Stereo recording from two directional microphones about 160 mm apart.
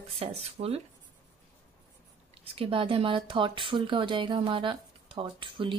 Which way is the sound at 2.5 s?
35° right (ahead or behind).